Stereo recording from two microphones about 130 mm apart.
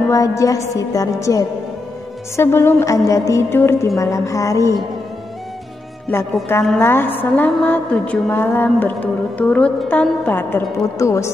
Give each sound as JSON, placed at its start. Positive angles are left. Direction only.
{"t": 0.1, "sound": "music", "side_deg": 25}
{"t": 6.8, "sound": "a woman's voice", "side_deg": 15}
{"t": 10.8, "sound": "music", "side_deg": 25}